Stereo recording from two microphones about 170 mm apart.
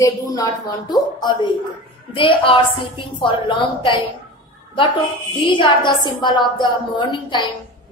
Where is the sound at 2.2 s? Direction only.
30° left (ahead or behind).